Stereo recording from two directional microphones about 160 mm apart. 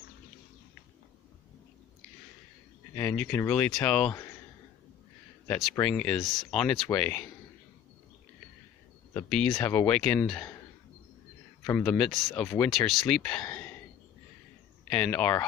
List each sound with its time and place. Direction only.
2.9 s speech: 10° left (ahead or behind)
5.5 s speech: 10° left (ahead or behind)
9.3 s speech: 5° left (ahead or behind)
11.8 s speech: 5° left (ahead or behind)
14.9 s speech: 5° left (ahead or behind)